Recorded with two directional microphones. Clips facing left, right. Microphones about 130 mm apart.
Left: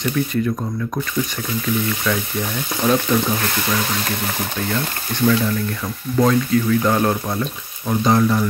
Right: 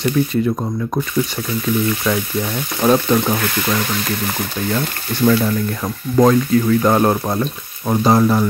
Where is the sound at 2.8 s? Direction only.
45° right (ahead or behind).